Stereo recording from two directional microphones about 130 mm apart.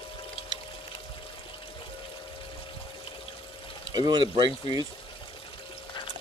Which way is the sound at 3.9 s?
35° right (ahead or behind).